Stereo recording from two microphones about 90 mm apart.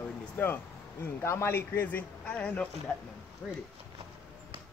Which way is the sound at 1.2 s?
30° left (ahead or behind).